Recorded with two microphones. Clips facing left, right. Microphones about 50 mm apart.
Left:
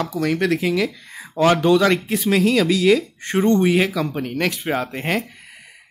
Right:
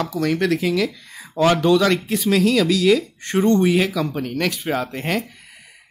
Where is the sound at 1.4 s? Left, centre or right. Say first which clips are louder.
Left 1 dB; centre.